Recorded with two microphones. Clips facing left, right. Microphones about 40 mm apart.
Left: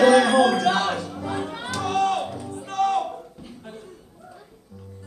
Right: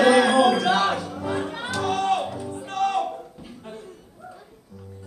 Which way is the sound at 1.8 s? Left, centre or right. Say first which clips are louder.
Left 1 dB; right.